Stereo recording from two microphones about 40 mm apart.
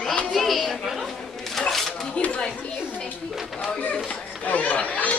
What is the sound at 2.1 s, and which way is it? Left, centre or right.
Speech, left.